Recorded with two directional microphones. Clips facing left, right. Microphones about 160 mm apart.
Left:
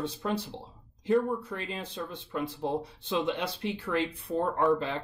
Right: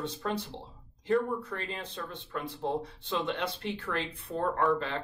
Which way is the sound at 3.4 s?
10° left (ahead or behind).